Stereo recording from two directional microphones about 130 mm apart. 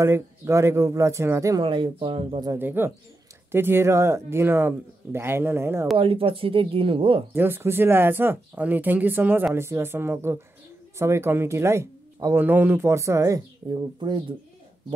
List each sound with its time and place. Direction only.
0.0 s speech: 20° right (ahead or behind)
1.6 s speech: 40° right (ahead or behind)
2.6 s speech: 15° right (ahead or behind)
5.9 s speech: 45° right (ahead or behind)
7.3 s speech: 15° right (ahead or behind)
13.7 s speech: 35° right (ahead or behind)